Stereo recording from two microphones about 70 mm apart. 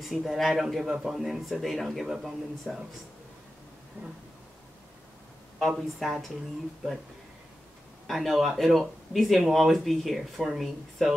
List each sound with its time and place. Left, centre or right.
0.0 s speech: centre
4.0 s a sound: right
5.6 s speech: centre
8.1 s speech: centre